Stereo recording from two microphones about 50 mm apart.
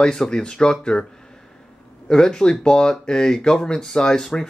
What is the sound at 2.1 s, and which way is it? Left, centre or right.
Speech, centre.